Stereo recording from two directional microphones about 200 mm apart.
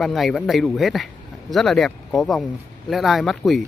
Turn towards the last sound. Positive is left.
turn(degrees=0)  # may be behind; listen again after turning